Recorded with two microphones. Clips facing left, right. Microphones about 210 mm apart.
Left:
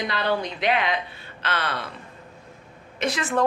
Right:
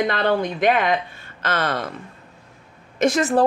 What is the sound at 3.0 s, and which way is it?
Speech, 45° right (ahead or behind).